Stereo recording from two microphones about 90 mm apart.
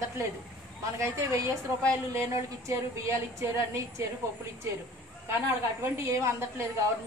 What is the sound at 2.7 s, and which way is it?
A woman's voice, 35° right (ahead or behind).